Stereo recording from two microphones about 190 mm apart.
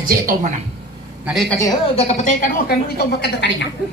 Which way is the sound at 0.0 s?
50° right (ahead or behind).